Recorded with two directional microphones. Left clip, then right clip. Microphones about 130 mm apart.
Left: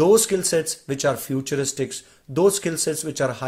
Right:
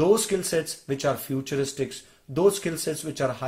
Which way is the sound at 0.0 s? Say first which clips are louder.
Left 5 dB; 35° left (ahead or behind).